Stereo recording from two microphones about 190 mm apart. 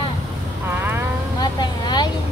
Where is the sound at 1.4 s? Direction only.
20° left (ahead or behind).